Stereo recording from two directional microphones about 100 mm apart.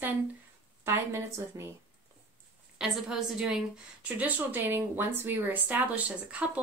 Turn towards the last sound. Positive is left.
turn(degrees=-15)  # may be behind; listen again after turning